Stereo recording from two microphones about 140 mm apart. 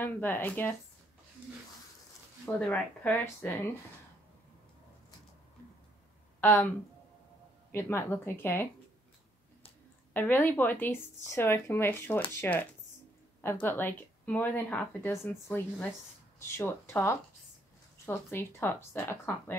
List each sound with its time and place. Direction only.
0.0 s speech: 15° left (ahead or behind)
2.4 s speech: 10° left (ahead or behind)
6.4 s speech: 15° left (ahead or behind)
7.7 s speech: 15° left (ahead or behind)
10.1 s speech: 15° left (ahead or behind)